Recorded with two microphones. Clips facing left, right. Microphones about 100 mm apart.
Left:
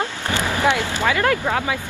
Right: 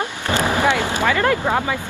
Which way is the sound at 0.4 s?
15° right (ahead or behind).